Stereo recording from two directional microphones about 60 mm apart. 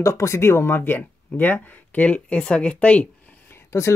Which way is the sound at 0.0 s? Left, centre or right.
Left.